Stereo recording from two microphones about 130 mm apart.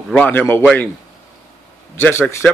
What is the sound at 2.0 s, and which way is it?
Speech, 15° left (ahead or behind).